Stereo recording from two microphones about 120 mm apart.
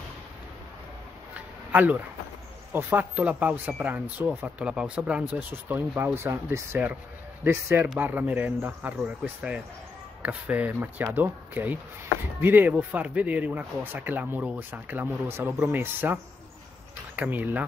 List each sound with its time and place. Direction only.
1.7 s speech: 15° right (ahead or behind)